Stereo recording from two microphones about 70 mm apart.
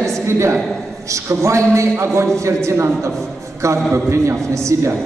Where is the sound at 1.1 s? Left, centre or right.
Right.